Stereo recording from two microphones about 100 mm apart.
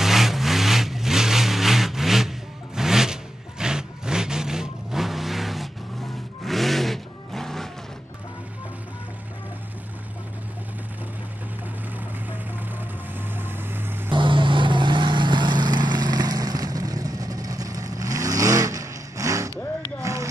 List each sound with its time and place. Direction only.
0.0 s vehicle: 5° right (ahead or behind)
13.4 s vehicle: 20° right (ahead or behind)
14.1 s vehicle: 55° right (ahead or behind); by 20.2 s 35° right (ahead or behind)